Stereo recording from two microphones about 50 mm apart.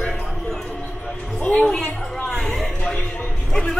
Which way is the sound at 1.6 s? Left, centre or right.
Centre.